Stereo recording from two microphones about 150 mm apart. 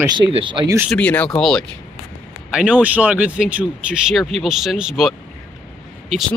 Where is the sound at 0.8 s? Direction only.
10° left (ahead or behind).